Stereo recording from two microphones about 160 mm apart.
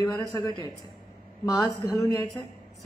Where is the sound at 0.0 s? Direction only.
25° left (ahead or behind).